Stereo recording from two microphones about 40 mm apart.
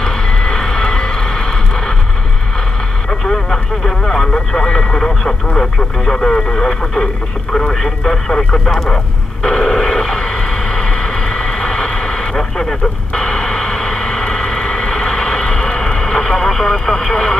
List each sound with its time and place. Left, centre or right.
0.0 s vehicle: centre
3.1 s speech: centre
8.8 s a sound: centre